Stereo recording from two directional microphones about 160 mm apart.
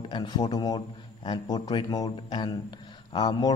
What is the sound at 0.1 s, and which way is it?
A man's voice, 25° left (ahead or behind).